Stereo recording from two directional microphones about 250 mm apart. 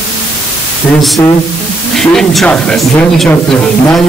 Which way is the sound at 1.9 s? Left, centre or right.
Centre.